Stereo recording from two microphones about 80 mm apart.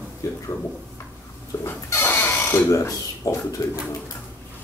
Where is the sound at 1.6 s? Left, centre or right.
Left.